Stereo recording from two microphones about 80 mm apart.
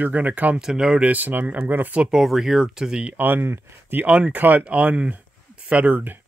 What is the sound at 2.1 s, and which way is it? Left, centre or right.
Speech, centre.